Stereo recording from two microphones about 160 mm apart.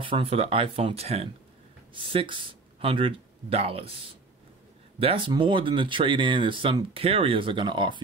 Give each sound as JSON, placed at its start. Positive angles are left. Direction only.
{"t": 0.0, "sound": "speech", "side_deg": -35}
{"t": 4.9, "sound": "speech", "side_deg": -35}